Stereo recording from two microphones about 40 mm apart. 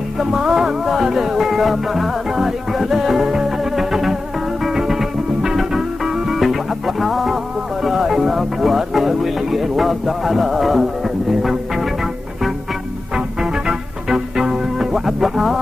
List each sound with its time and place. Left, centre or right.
0.2 s music: centre
6.4 s music: centre
7.8 s speech: centre
11.4 s music: centre
13.1 s music: centre